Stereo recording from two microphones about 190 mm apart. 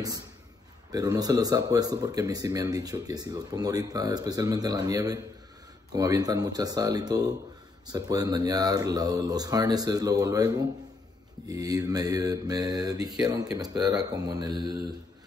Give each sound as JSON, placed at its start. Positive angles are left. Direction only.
{"t": 0.9, "sound": "speech", "side_deg": -20}